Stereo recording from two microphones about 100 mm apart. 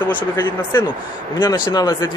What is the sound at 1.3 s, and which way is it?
Speech, 45° left (ahead or behind).